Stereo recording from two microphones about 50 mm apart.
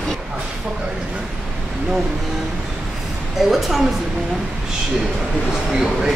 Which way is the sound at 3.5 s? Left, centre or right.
Centre.